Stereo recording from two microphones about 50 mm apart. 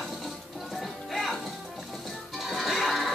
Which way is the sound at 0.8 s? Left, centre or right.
Centre.